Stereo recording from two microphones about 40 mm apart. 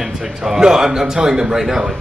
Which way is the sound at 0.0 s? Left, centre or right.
Centre.